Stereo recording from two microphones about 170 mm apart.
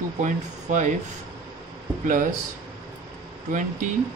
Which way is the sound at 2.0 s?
50° right (ahead or behind).